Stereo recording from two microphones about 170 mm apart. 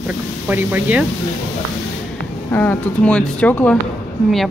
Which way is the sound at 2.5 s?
10° left (ahead or behind).